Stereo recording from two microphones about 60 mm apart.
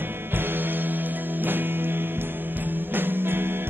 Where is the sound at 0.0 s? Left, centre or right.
Right.